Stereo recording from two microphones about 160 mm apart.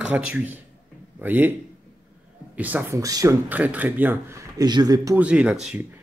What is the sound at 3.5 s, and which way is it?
A man's voice, 10° right (ahead or behind).